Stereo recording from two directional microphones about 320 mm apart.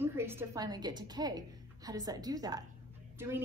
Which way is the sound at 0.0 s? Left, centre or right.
Centre.